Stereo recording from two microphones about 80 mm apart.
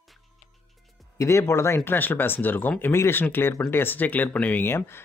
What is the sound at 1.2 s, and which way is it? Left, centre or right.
Speech, left.